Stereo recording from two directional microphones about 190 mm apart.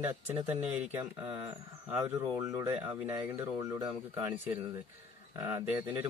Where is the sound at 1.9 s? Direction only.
10° right (ahead or behind).